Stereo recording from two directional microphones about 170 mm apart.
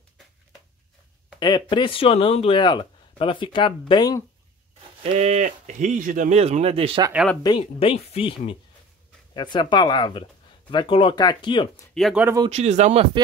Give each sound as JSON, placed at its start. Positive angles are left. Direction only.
{"t": 1.4, "sound": "speech", "side_deg": 25}
{"t": 5.0, "sound": "speech", "side_deg": -40}
{"t": 7.4, "sound": "speech", "side_deg": 30}
{"t": 11.9, "sound": "speech", "side_deg": 0}
{"t": 12.4, "sound": "speech", "side_deg": -40}